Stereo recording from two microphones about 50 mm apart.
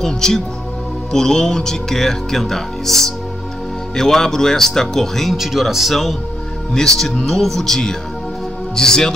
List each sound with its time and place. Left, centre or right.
0.0 s speech: centre